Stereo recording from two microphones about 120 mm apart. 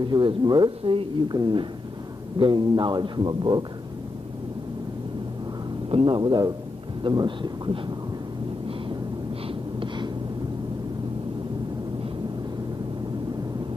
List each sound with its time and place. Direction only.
0.0 s speech: 40° right (ahead or behind)
5.9 s speech: 45° right (ahead or behind)
9.5 s gasp: 40° right (ahead or behind)